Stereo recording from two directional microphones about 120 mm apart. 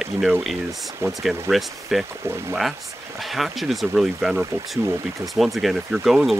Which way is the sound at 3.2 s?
Centre (ahead or behind).